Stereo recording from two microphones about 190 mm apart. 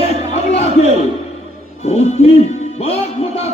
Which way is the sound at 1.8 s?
35° left (ahead or behind).